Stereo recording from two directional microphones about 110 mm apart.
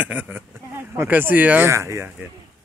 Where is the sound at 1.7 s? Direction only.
25° right (ahead or behind).